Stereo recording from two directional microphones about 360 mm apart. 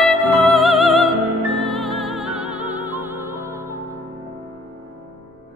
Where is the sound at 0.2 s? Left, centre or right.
Centre.